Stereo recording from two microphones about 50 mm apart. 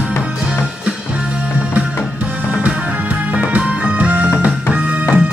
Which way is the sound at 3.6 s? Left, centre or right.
Right.